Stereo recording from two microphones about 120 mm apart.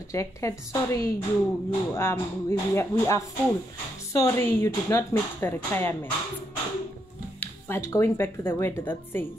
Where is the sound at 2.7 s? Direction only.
25° left (ahead or behind).